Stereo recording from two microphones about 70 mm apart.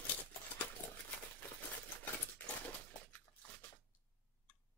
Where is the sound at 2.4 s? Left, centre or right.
Left.